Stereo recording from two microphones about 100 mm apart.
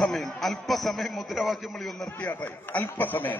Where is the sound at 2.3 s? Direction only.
15° left (ahead or behind).